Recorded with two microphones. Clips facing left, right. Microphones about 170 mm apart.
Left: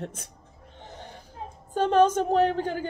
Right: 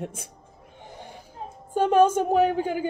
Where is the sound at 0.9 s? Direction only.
10° right (ahead or behind).